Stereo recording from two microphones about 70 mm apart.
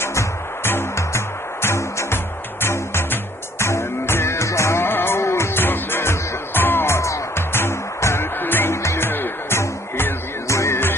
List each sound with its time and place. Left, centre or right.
0.0 s music: left
7.0 s music: left